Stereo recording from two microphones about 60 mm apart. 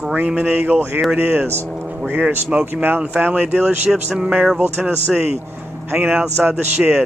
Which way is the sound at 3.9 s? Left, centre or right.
Centre.